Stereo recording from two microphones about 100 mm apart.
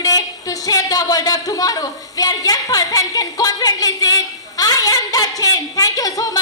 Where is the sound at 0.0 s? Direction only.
40° left (ahead or behind).